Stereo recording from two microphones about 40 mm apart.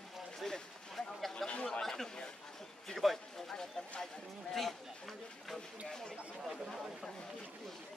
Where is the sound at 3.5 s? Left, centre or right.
Centre.